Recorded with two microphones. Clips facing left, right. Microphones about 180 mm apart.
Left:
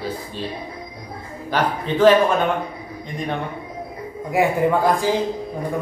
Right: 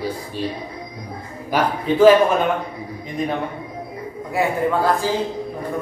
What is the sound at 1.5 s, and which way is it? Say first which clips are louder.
Speech: right 2 dB; 10° right (ahead or behind).